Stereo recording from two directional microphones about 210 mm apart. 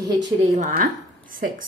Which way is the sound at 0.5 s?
40° right (ahead or behind).